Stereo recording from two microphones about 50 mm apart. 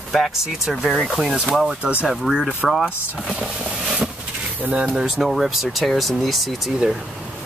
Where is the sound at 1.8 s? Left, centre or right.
Right.